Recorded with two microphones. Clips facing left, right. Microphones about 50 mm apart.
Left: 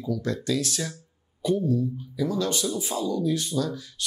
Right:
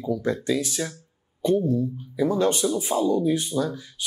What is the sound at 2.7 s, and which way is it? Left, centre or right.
Speech, centre.